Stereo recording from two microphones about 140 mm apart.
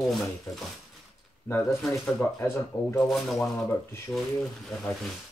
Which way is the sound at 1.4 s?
15° left (ahead or behind).